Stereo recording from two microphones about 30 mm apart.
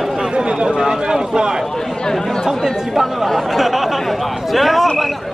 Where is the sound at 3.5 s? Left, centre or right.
Centre.